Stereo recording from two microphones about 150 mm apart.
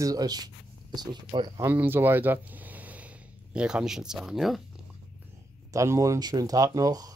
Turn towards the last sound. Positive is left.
turn(degrees=-25)  # may be behind; listen again after turning